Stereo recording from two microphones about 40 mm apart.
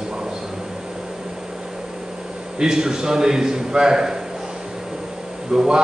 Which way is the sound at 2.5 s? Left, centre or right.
Centre.